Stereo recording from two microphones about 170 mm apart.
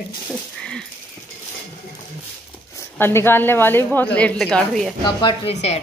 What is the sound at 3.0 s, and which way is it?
A woman's voice, 15° left (ahead or behind).